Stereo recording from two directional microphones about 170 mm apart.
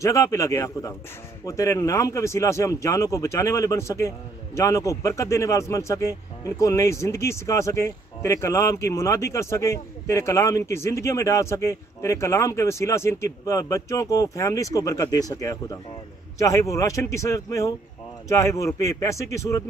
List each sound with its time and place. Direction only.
0.0 s a man's voice: 20° left (ahead or behind)